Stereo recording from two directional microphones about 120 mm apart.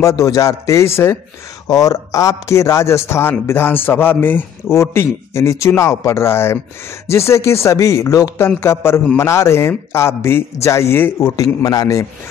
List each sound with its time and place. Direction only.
0.0 s a man's voice: 25° left (ahead or behind)
11.3 s a man's voice: 30° left (ahead or behind)